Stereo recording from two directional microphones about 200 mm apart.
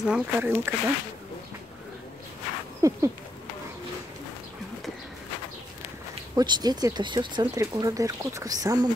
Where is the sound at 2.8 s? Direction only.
15° right (ahead or behind).